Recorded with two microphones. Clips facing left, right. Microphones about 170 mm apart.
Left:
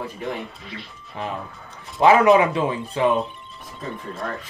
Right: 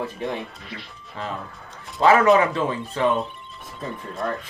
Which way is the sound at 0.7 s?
Centre (ahead or behind).